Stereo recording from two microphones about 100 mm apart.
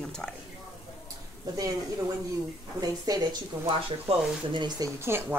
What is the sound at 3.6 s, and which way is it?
Speech, 60° right (ahead or behind).